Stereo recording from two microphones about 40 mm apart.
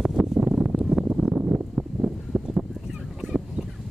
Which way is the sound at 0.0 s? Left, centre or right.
Centre.